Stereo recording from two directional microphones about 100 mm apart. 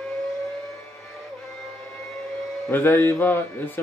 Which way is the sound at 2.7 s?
20° left (ahead or behind).